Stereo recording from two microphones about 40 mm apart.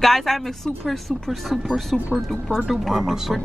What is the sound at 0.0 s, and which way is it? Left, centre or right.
Speech, centre.